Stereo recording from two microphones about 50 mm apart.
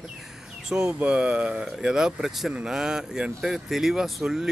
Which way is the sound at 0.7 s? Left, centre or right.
Centre.